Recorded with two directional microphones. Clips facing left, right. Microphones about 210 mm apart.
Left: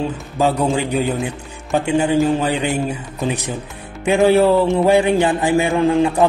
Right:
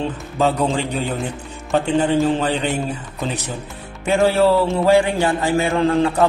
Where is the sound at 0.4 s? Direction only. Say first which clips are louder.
Left 1 dB; 10° left (ahead or behind).